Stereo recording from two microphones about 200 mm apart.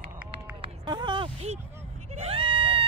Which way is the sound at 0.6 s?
20° right (ahead or behind).